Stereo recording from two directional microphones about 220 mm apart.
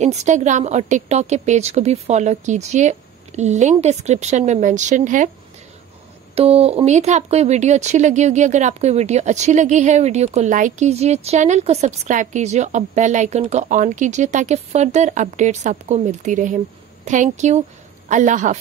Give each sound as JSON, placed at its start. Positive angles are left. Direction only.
{"t": 0.0, "sound": "speech", "side_deg": -30}
{"t": 6.3, "sound": "a woman's voice", "side_deg": -25}